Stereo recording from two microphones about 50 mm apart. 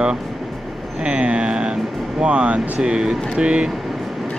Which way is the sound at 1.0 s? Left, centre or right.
Right.